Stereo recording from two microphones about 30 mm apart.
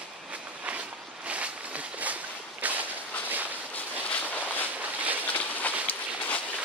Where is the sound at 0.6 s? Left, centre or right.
Right.